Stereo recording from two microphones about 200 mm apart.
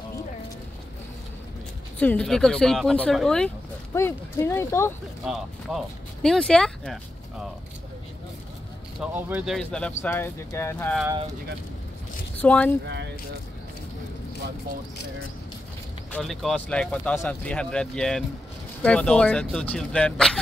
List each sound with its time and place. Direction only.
2.0 s speech: 5° left (ahead or behind)
5.2 s speech: centre (ahead or behind)
9.0 s speech: 5° right (ahead or behind); by 11.0 s 10° left (ahead or behind)
12.4 s speech: 5° left (ahead or behind)
12.8 s speech: 60° right (ahead or behind)
16.1 s speech: centre (ahead or behind)